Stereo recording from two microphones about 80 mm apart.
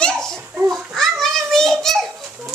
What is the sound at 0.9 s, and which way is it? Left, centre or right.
Children playing, centre.